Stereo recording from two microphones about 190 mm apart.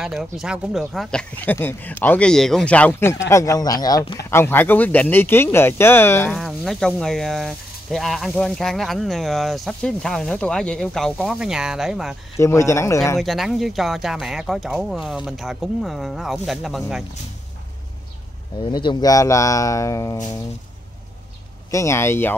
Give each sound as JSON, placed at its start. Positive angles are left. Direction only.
{"t": 0.0, "sound": "speech", "side_deg": 0}
{"t": 4.3, "sound": "speech", "side_deg": 10}
{"t": 6.3, "sound": "speech", "side_deg": 0}
{"t": 12.4, "sound": "speech", "side_deg": 15}
{"t": 13.2, "sound": "speech", "side_deg": 0}
{"t": 18.6, "sound": "speech", "side_deg": 25}
{"t": 21.6, "sound": "speech", "side_deg": 15}